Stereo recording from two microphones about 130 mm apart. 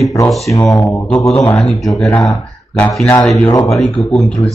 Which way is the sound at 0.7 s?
25° left (ahead or behind).